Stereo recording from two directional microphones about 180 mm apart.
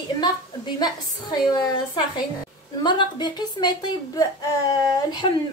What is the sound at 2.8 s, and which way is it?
Speech, 25° left (ahead or behind).